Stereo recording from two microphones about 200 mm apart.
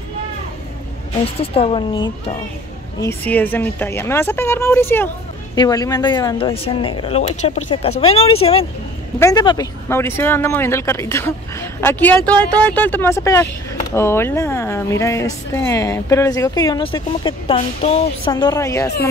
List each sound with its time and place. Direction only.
1.2 s speech: 30° left (ahead or behind)
3.0 s speech: 10° left (ahead or behind)
17.6 s music: 30° left (ahead or behind)
18.3 s speech: 15° left (ahead or behind)